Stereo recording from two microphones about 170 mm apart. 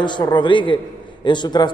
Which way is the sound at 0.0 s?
25° left (ahead or behind).